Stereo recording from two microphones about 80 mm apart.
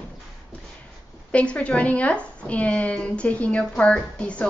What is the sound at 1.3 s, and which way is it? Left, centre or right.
A woman's voice, centre.